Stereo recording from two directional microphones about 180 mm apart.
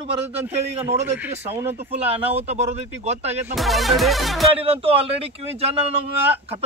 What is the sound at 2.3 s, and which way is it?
A man's voice, 35° right (ahead or behind).